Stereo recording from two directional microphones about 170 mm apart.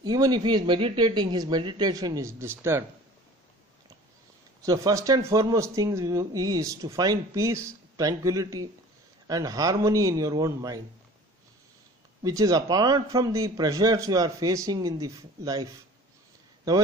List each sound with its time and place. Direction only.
0.0 s speech: 25° right (ahead or behind)
4.6 s speech: 20° right (ahead or behind)
12.2 s speech: 25° right (ahead or behind)